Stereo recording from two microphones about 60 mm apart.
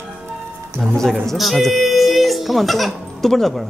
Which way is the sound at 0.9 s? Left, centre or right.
Centre.